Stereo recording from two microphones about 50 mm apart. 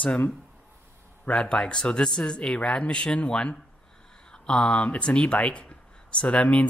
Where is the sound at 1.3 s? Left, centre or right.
Centre.